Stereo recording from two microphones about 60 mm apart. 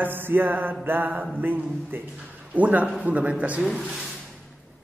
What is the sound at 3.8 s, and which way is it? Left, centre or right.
Speech, centre.